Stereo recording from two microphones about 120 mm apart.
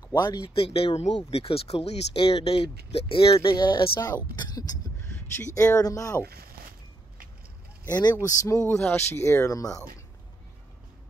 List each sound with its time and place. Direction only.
0.1 s speech: 30° left (ahead or behind)
0.6 s speech: 50° left (ahead or behind)
3.4 s speech: 40° left (ahead or behind)
7.9 s speech: 35° left (ahead or behind)
8.6 s speech: 20° left (ahead or behind)